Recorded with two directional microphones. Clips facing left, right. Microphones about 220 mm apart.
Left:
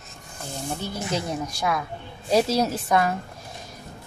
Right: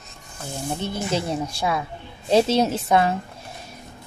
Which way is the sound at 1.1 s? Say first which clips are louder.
Right 2 dB; 30° right (ahead or behind).